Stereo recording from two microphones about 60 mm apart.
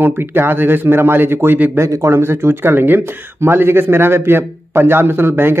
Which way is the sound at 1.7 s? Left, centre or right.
Right.